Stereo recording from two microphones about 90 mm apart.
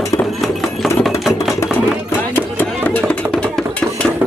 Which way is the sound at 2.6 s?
15° left (ahead or behind).